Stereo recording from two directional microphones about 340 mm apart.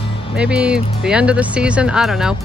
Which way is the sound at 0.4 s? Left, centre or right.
Centre.